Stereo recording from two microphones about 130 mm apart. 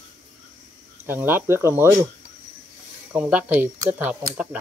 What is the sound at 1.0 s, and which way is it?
Speech, 15° right (ahead or behind).